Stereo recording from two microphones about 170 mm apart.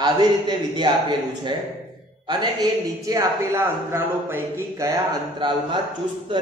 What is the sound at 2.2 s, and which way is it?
A man's voice, 25° right (ahead or behind).